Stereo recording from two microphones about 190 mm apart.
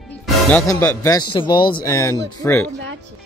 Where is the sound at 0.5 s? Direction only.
10° left (ahead or behind).